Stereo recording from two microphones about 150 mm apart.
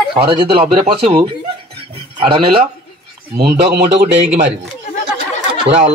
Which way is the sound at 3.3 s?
90° right.